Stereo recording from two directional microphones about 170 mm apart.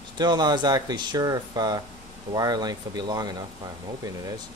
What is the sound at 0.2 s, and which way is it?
Speech, 25° right (ahead or behind).